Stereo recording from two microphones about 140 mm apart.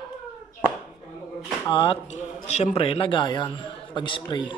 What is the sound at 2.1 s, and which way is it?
Speech, 50° left (ahead or behind).